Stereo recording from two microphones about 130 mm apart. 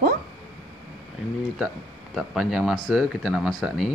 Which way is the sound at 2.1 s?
Centre (ahead or behind).